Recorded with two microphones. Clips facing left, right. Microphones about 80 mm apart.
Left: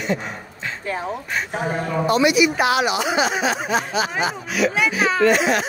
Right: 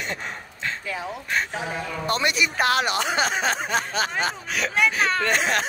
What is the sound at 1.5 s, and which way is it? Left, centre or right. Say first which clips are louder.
Speech: left 6 dB; left.